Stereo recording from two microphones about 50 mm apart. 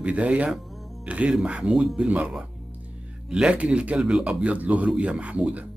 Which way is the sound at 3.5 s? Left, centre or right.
Right.